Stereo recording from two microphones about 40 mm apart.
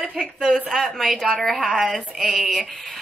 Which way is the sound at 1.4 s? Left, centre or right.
Centre.